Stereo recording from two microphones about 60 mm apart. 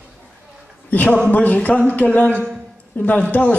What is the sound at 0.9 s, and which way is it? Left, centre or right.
A man's voice, left.